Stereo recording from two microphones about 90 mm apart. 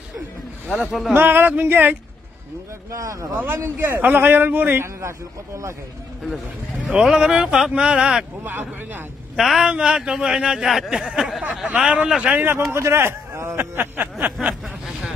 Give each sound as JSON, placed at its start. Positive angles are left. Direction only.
{"t": 0.7, "sound": "speech", "side_deg": 0}
{"t": 1.1, "sound": "a man's voice", "side_deg": -25}
{"t": 2.9, "sound": "speech", "side_deg": -35}
{"t": 3.3, "sound": "a man's voice", "side_deg": -25}
{"t": 6.9, "sound": "speech", "side_deg": -10}
{"t": 8.5, "sound": "a man's voice", "side_deg": -25}
{"t": 9.4, "sound": "speech", "side_deg": -5}
{"t": 12.4, "sound": "a man's voice", "side_deg": -25}
{"t": 14.9, "sound": "vehicle", "side_deg": -5}